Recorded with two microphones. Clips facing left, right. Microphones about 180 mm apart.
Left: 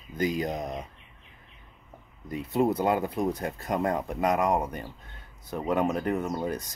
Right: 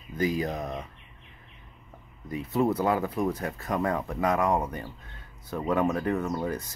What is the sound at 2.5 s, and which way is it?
Speech, 20° left (ahead or behind).